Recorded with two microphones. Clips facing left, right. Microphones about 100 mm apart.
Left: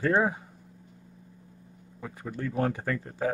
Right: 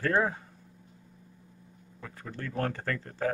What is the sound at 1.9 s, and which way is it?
A man's voice, 15° left (ahead or behind).